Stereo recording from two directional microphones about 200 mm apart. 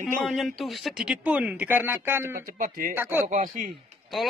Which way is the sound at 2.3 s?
45° right (ahead or behind).